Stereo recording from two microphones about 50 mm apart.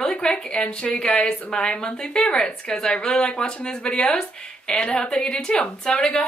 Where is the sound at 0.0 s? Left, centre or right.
Centre.